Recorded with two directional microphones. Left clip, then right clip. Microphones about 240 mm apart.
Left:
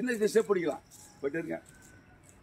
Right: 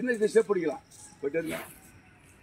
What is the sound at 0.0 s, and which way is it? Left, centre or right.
Speech, left.